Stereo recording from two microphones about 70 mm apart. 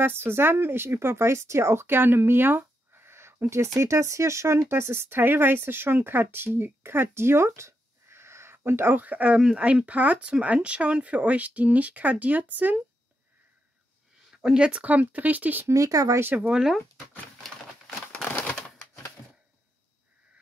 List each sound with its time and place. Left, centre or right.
0.0 s speech: right
14.3 s speech: centre
15.6 s speech: right
16.3 s speech: centre
18.1 s typewriter: centre